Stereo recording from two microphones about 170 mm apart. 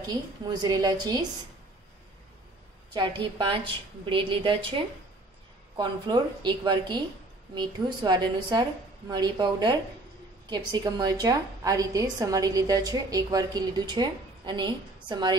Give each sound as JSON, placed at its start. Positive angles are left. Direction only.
{"t": 0.0, "sound": "a woman's voice", "side_deg": -25}
{"t": 2.9, "sound": "a woman's voice", "side_deg": -30}